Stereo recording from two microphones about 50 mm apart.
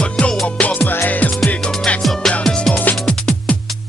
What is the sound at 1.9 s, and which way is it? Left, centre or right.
Music, left.